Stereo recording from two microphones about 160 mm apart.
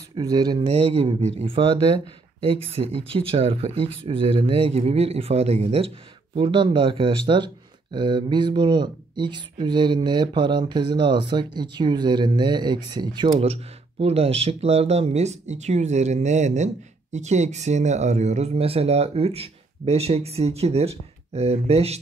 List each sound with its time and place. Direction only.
0.1 s speech: 25° right (ahead or behind)
0.7 s speech: 40° right (ahead or behind)
13.4 s speech: 40° right (ahead or behind)